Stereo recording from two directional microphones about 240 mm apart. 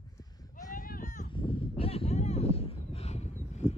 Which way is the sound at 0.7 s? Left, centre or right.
Left.